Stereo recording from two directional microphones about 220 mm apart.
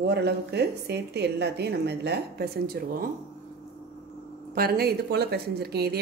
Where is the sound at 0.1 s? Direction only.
50° right (ahead or behind).